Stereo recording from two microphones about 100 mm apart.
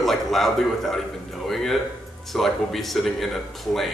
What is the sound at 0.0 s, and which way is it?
A man's voice, centre (ahead or behind).